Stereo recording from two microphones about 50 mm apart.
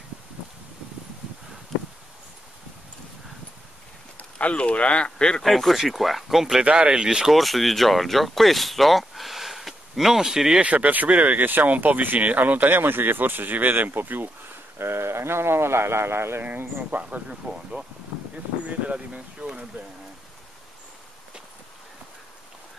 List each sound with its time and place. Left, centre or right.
4.2 s speech: left
5.4 s speech: centre
6.6 s speech: centre
7.3 s speech: centre
10.6 s speech: right
14.8 s speech: right
16.4 s speech: right
17.3 s speech: centre
18.9 s speech: right